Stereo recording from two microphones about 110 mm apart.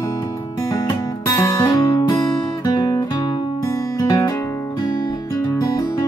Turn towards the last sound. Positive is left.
turn(degrees=25)  # may be behind; listen again after turning